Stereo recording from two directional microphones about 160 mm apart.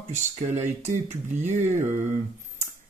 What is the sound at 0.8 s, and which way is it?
Speech, 45° right (ahead or behind).